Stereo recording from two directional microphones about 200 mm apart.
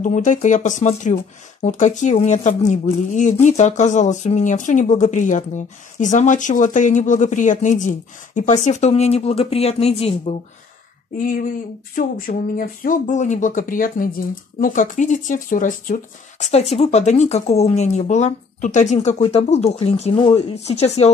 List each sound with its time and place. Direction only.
0.0 s speech: 40° left (ahead or behind)
11.1 s speech: 40° left (ahead or behind)